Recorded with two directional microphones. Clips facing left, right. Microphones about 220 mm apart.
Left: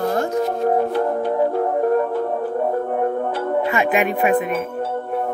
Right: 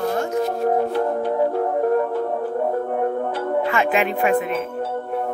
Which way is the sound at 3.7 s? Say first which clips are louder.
Left 1 dB; 15° left (ahead or behind).